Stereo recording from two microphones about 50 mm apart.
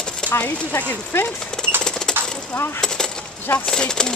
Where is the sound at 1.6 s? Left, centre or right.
Centre.